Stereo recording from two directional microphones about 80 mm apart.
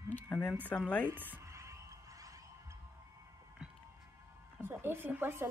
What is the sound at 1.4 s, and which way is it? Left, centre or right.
Music, right.